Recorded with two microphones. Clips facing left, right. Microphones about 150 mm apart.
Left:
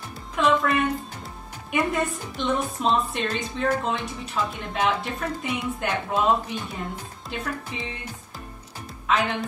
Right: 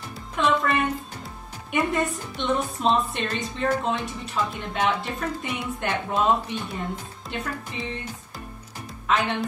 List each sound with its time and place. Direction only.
0.4 s a woman's voice: centre (ahead or behind)
9.0 s speech: centre (ahead or behind)